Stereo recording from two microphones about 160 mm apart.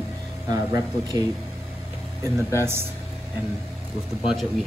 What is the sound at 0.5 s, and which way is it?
Speech, 25° right (ahead or behind).